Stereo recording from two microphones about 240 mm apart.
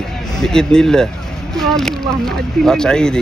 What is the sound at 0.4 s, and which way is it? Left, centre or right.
A man's voice, centre.